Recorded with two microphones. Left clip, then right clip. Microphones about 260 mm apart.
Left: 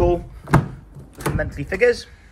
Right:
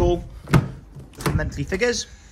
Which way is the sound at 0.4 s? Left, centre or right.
Centre.